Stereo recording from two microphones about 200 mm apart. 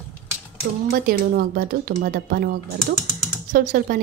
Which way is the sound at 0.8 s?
45° right (ahead or behind).